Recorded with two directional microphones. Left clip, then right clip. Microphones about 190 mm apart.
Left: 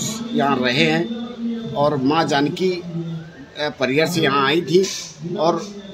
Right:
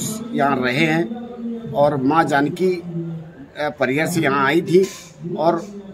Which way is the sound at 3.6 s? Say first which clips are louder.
Left 1 dB; 20° right (ahead or behind).